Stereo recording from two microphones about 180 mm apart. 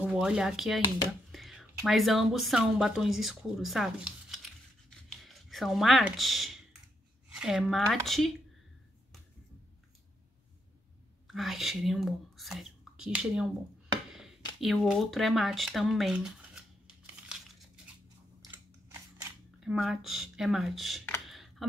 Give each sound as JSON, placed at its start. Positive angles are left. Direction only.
{"t": 0.0, "sound": "speech", "side_deg": -5}
{"t": 4.8, "sound": "rub", "side_deg": 0}
{"t": 7.3, "sound": "speech", "side_deg": -5}
{"t": 11.2, "sound": "speech", "side_deg": 0}
{"t": 14.1, "sound": "a sound", "side_deg": 0}
{"t": 18.5, "sound": "scissors", "side_deg": -15}
{"t": 19.6, "sound": "speech", "side_deg": 0}
{"t": 21.3, "sound": "computer keyboard", "side_deg": 0}